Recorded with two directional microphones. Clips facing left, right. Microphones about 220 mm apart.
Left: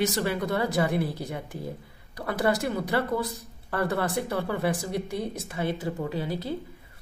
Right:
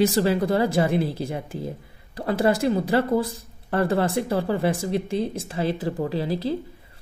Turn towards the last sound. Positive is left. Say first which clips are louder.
# right 4 dB
turn(degrees=-35)  # may be behind; listen again after turning